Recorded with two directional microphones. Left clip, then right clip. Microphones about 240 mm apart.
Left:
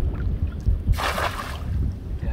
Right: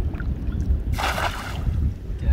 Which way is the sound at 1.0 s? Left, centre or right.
Centre.